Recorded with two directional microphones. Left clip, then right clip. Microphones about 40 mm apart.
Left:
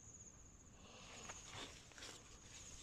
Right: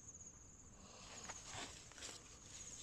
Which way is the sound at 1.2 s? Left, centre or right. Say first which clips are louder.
Right 3 dB; right.